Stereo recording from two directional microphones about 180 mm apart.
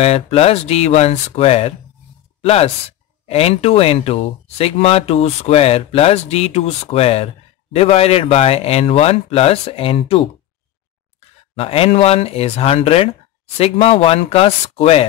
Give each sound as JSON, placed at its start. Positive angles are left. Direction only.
{"t": 0.0, "sound": "speech", "side_deg": 35}